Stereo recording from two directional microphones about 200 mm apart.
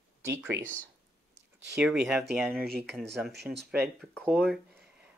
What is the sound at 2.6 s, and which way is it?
Speech, 50° right (ahead or behind).